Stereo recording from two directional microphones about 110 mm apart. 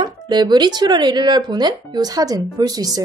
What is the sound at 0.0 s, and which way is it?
Speech, 40° right (ahead or behind).